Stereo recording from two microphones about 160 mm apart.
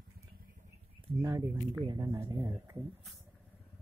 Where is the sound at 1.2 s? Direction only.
20° right (ahead or behind).